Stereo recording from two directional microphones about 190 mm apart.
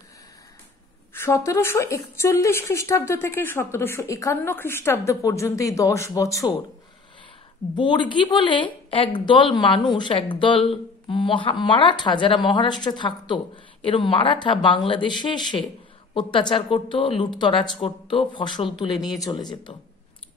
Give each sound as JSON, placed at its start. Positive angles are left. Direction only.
{"t": 1.1, "sound": "a woman's voice", "side_deg": 15}
{"t": 7.7, "sound": "speech", "side_deg": 25}